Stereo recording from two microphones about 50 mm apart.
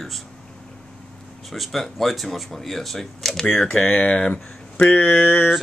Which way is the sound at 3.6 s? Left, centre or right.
Left.